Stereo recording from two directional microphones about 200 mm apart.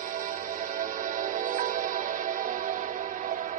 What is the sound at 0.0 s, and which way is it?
Music, 40° right (ahead or behind).